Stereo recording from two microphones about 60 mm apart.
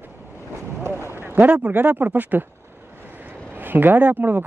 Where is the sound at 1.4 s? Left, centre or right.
Right.